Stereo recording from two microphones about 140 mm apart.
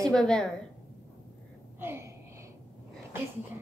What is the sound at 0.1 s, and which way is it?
Speech, 5° left (ahead or behind).